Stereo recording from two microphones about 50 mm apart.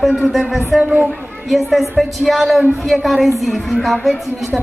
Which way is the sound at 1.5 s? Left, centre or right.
Centre.